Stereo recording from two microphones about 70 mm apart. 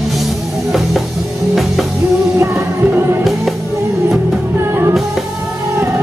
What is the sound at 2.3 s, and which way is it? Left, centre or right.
Music, right.